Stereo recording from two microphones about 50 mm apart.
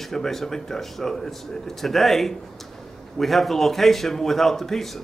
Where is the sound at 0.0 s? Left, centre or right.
Centre.